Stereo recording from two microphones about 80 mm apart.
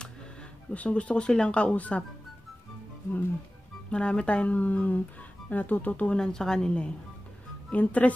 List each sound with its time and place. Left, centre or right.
0.0 s speech: centre
3.9 s speech: centre